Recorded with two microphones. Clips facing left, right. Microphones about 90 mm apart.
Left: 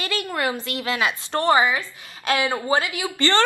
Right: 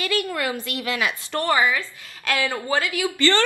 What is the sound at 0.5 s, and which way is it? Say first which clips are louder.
A woman's voice: left 1 dB; 25° left (ahead or behind).